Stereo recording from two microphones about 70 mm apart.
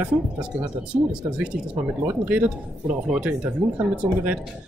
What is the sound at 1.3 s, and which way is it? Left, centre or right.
Speech, centre.